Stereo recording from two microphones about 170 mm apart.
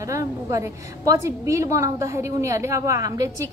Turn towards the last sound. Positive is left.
turn(degrees=-20)  # may be behind; listen again after turning